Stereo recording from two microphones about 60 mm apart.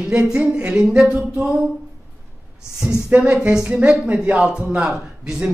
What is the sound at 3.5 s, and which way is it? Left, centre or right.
Speech, centre.